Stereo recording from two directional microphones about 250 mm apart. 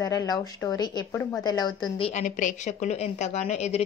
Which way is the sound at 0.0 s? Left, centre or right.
Centre.